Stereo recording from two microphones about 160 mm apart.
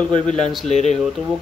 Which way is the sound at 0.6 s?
45° left (ahead or behind).